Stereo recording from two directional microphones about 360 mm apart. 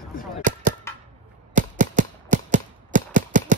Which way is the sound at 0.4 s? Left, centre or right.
Right.